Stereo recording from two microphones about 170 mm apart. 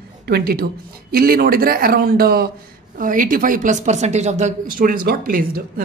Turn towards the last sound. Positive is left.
turn(degrees=-60)  # may be behind; listen again after turning